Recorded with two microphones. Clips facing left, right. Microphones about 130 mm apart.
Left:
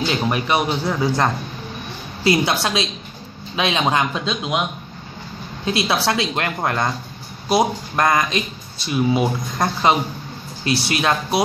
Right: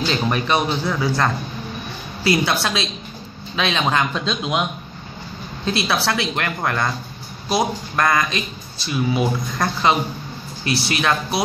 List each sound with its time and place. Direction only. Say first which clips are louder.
0.0 s speech: even; 10° left (ahead or behind)
4.1 s a man's voice: even; 5° left (ahead or behind)
5.7 s speech: left 1 dB; 20° left (ahead or behind)